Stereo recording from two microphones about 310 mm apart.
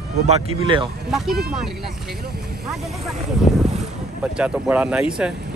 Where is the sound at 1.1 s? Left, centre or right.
Centre.